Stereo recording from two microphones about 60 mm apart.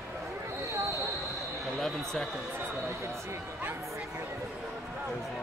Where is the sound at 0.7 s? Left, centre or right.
Right.